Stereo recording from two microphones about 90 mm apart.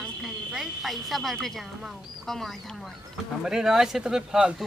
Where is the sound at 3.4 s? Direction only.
5° right (ahead or behind).